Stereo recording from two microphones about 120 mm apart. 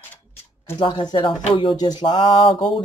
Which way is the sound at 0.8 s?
40° left (ahead or behind).